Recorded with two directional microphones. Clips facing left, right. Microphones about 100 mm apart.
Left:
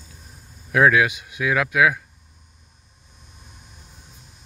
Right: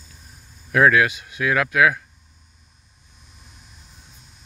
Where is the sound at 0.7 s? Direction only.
10° left (ahead or behind).